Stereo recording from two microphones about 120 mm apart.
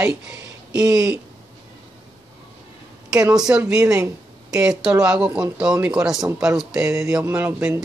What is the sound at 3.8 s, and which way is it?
Speech, 30° right (ahead or behind).